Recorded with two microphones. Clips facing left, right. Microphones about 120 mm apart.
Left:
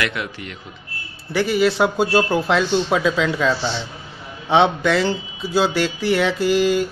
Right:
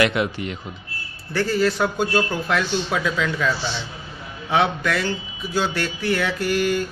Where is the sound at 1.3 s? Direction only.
15° left (ahead or behind).